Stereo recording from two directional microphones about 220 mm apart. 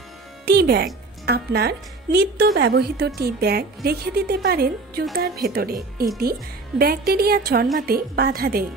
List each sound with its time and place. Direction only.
0.5 s a woman's voice: 45° right (ahead or behind)